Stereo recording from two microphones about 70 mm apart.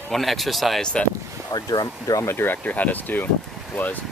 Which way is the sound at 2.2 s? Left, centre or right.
Left.